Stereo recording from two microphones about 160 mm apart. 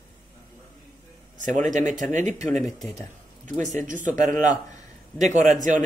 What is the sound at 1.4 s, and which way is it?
Speech, 50° right (ahead or behind).